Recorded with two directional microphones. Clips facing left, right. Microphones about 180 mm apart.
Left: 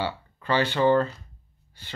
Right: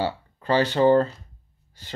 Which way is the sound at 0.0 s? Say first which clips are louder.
Right 3 dB; 40° right (ahead or behind).